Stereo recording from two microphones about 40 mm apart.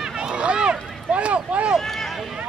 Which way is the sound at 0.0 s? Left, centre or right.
Right.